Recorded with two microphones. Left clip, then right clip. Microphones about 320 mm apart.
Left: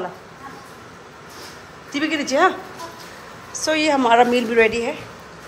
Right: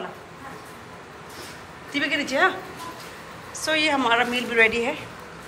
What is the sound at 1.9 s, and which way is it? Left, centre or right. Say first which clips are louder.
Speech: left 2 dB; centre.